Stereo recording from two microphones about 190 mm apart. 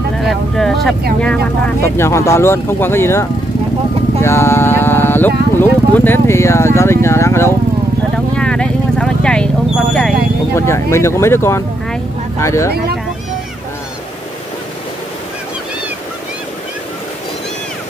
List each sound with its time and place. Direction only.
0.2 s speech: centre (ahead or behind)
8.4 s vehicle: 5° left (ahead or behind)
9.9 s speech: 10° left (ahead or behind)
12.7 s speech: 55° right (ahead or behind)